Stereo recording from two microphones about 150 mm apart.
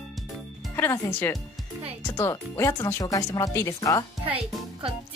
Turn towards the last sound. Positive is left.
turn(degrees=-40)  # may be behind; listen again after turning